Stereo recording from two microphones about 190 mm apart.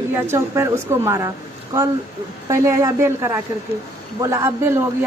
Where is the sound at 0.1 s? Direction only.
15° right (ahead or behind).